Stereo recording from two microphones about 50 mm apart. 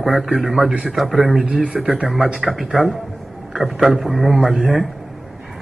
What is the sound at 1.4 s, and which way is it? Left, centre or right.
Speech, right.